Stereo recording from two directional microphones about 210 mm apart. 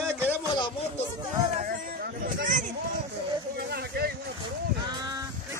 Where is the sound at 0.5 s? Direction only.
20° left (ahead or behind).